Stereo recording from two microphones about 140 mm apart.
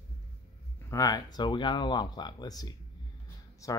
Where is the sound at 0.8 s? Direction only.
25° left (ahead or behind).